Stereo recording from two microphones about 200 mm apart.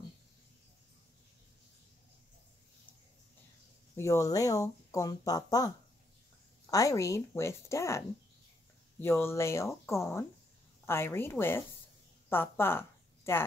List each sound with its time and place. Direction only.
3.9 s speech: 15° left (ahead or behind)
6.7 s speech: 15° left (ahead or behind)
9.0 s a woman's voice: 10° left (ahead or behind)